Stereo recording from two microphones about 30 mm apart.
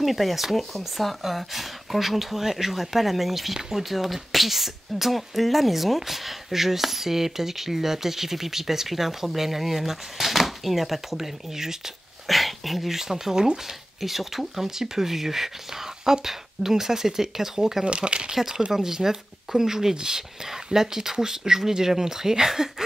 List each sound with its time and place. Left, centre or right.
0.0 s speech: centre
12.3 s speech: centre; by 13.6 s right
14.0 s speech: centre
17.8 s speech: right
18.3 s speech: centre